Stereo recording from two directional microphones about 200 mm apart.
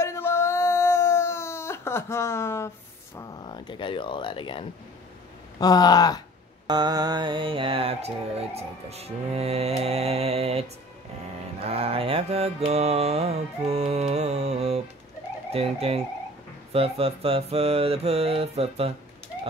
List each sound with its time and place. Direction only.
0.0 s a sound: 15° left (ahead or behind)
3.2 s speech: 20° left (ahead or behind)
6.7 s mantra: 20° right (ahead or behind)
11.6 s mantra: 30° right (ahead or behind)